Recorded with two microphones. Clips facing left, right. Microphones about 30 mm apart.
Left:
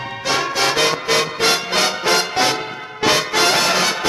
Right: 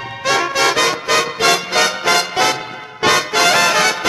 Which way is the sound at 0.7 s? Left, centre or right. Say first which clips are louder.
Right 2 dB; centre.